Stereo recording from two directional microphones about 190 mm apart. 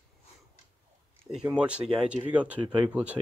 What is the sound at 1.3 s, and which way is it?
Speech, 5° right (ahead or behind).